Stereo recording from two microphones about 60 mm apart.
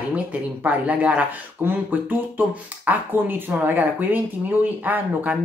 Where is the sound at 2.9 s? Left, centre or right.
Right.